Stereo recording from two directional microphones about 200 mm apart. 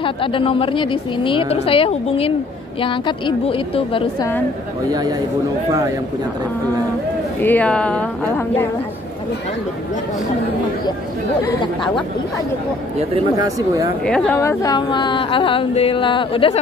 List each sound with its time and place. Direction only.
0.0 s speech: 25° left (ahead or behind)
7.3 s a woman's voice: 10° left (ahead or behind)
13.1 s speech: 20° right (ahead or behind)
14.0 s speech: 5° left (ahead or behind); by 16.5 s 25° left (ahead or behind)